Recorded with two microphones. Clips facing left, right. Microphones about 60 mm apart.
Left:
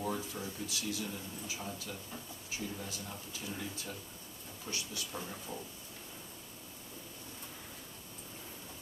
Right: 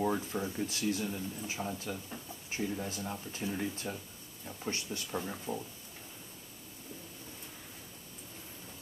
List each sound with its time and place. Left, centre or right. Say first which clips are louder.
0.0 s speech: right 5 dB; right
5.2 s speech: right 5 dB; centre